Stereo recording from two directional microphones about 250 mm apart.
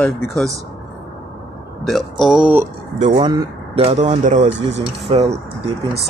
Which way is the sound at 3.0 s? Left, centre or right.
Right.